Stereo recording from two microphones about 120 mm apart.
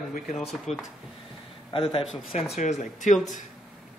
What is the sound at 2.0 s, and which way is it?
Speech, 5° right (ahead or behind).